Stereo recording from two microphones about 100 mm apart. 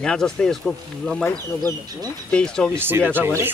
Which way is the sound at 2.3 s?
10° left (ahead or behind).